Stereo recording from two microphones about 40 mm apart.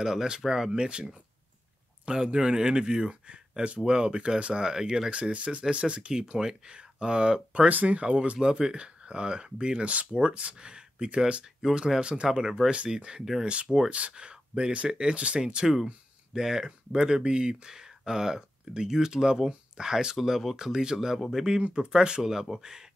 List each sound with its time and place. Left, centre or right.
0.0 s speech: centre
2.0 s speech: right
5.1 s speech: right
7.6 s speech: right; by 22.8 s centre